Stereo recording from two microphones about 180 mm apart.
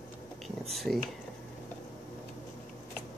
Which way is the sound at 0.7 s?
Centre (ahead or behind).